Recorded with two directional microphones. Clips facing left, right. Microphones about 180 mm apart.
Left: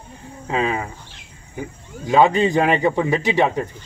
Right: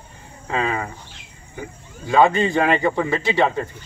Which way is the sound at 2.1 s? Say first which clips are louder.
Left 1 dB; 15° left (ahead or behind).